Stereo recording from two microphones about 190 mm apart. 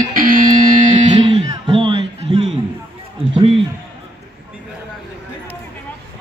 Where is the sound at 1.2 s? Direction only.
25° right (ahead or behind).